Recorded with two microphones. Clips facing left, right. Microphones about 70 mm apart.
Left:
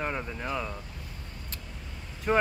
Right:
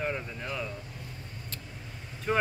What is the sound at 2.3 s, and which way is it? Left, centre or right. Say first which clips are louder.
Speech: left 3 dB; centre.